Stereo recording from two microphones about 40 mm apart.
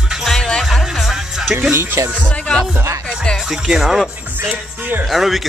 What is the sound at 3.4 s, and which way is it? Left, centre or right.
Speech, centre.